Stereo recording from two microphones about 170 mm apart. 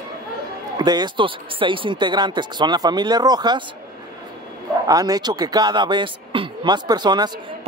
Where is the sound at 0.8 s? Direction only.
25° right (ahead or behind).